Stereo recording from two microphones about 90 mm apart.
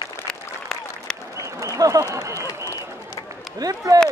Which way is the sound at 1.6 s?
35° right (ahead or behind).